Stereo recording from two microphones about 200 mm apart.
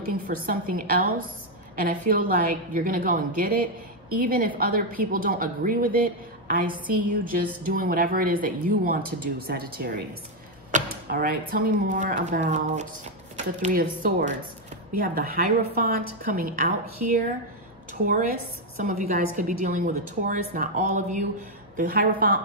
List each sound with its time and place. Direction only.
0.1 s a woman's voice: 45° right (ahead or behind)
18.8 s a woman's voice: 45° right (ahead or behind)